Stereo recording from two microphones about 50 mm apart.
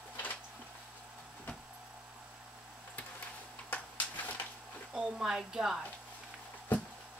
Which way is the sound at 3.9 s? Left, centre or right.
Left.